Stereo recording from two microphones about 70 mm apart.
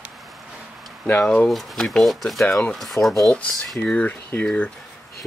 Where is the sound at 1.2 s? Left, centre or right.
Centre.